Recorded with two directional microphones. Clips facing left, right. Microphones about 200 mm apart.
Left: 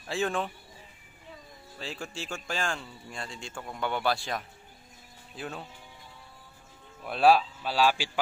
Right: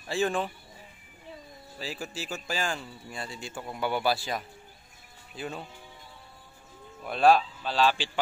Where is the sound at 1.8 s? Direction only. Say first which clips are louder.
Right 1 dB; 5° right (ahead or behind).